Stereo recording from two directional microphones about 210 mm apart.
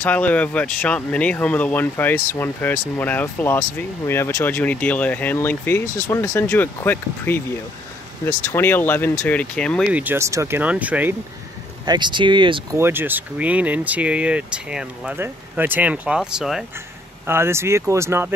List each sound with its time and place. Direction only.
0.0 s speech: 5° left (ahead or behind)
11.8 s speech: 20° right (ahead or behind)
12.7 s speech: 10° right (ahead or behind)